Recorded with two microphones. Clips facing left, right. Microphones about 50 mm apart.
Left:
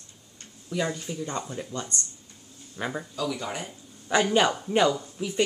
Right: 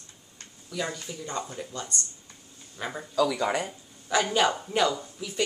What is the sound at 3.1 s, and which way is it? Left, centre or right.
Speech, right.